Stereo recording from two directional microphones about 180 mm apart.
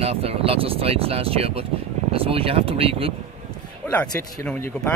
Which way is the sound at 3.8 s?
10° left (ahead or behind).